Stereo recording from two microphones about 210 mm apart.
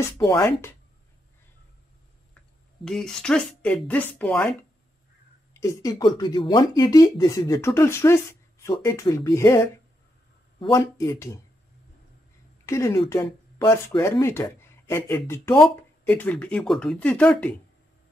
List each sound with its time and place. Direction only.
0.0 s speech: 15° left (ahead or behind)
2.8 s speech: centre (ahead or behind)
5.5 s speech: 15° left (ahead or behind)
10.6 s speech: 20° left (ahead or behind)
12.6 s speech: 15° left (ahead or behind)